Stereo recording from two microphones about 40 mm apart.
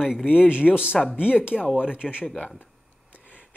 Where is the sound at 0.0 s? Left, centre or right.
Centre.